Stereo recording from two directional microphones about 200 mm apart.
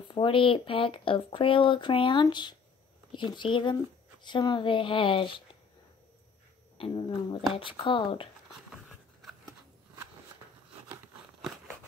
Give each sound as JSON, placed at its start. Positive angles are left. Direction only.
{"t": 0.1, "sound": "speech", "side_deg": 25}
{"t": 6.8, "sound": "speech", "side_deg": 25}